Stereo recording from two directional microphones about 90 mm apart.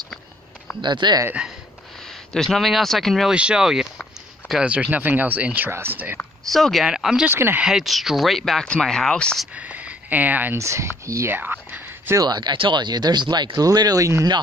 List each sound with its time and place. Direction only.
0.8 s speech: 55° right (ahead or behind)
2.3 s speech: 5° left (ahead or behind)
3.3 s speech: 10° right (ahead or behind)
6.5 s speech: centre (ahead or behind)
7.2 s speech: 25° right (ahead or behind)
7.6 s speech: 5° right (ahead or behind)
9.6 s speech: 15° right (ahead or behind)
10.6 s speech: 35° right (ahead or behind)
12.2 s speech: 55° right (ahead or behind)